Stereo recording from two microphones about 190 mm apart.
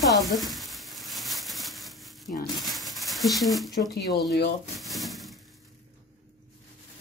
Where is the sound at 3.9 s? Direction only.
60° left (ahead or behind).